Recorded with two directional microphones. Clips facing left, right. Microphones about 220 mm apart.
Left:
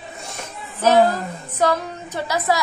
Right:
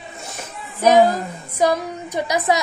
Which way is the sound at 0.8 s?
15° right (ahead or behind).